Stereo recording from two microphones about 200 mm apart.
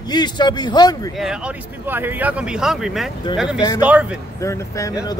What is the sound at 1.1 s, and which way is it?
Speech, 5° right (ahead or behind).